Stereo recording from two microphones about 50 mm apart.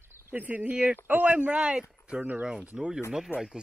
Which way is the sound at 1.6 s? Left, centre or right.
Centre.